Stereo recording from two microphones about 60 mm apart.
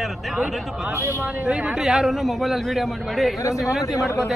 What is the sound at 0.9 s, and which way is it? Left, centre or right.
Speech, right.